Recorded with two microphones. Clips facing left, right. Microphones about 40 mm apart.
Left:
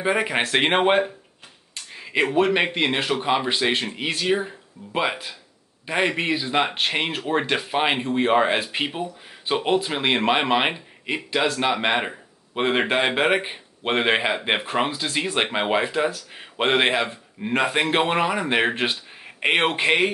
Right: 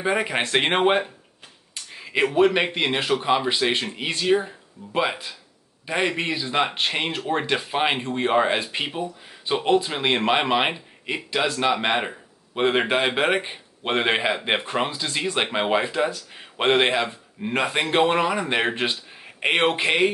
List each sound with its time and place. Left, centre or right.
0.0 s speech: centre
1.9 s a sound: centre
2.3 s speech: centre